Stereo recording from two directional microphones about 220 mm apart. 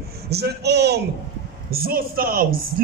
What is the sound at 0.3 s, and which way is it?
A man's voice, 50° right (ahead or behind).